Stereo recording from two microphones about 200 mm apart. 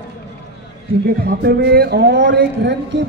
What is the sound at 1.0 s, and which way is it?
Speech, 50° right (ahead or behind).